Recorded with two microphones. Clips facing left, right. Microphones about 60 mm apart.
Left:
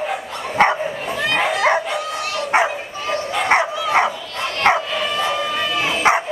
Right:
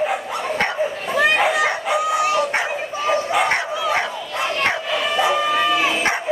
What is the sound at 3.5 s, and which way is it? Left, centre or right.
Dog, centre.